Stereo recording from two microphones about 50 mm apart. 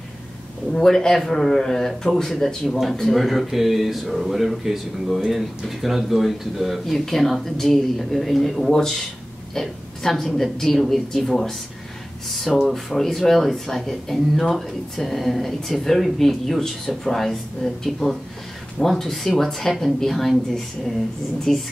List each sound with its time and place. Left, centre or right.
0.7 s speech: centre